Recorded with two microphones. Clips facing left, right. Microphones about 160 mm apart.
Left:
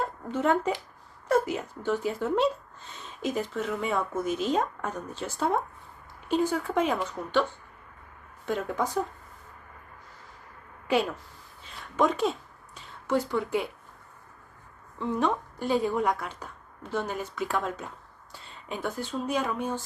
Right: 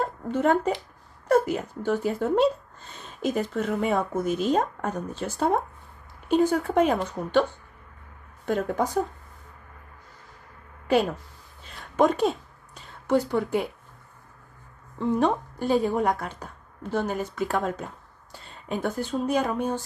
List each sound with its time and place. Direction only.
0.0 s a sound: 45° right (ahead or behind)
1.3 s speech: 45° right (ahead or behind)
3.5 s speech: 50° right (ahead or behind)
8.5 s speech: 45° right (ahead or behind)
10.9 s speech: 40° right (ahead or behind)
15.0 s a woman's voice: 45° right (ahead or behind)